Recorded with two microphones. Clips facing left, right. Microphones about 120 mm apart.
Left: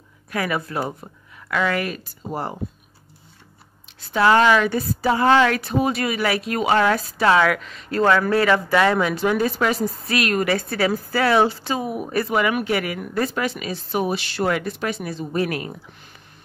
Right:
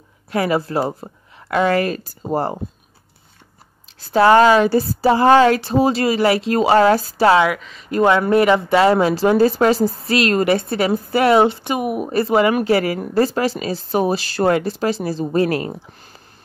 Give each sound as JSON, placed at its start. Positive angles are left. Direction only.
{"t": 0.3, "sound": "a woman's voice", "side_deg": -30}
{"t": 4.1, "sound": "a woman's voice", "side_deg": -35}
{"t": 7.4, "sound": "speech", "side_deg": 0}
{"t": 7.9, "sound": "a woman's voice", "side_deg": -20}